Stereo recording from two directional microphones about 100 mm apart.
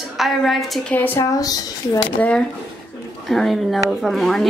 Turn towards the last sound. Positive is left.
turn(degrees=0)  # may be behind; listen again after turning